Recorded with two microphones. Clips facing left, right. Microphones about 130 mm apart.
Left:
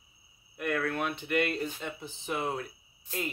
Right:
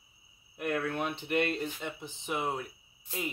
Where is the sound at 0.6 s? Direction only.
25° right (ahead or behind).